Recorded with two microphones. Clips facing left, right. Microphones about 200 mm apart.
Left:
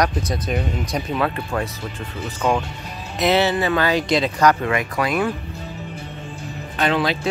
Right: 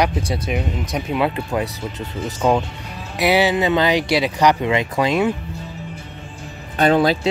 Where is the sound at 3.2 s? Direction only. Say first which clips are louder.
Right 1 dB; 10° right (ahead or behind).